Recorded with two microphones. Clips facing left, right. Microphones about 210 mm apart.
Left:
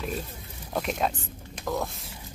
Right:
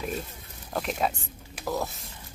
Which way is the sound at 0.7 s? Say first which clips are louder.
Left 1 dB; centre (ahead or behind).